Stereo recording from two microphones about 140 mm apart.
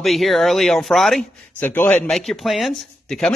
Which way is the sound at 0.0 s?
Centre (ahead or behind).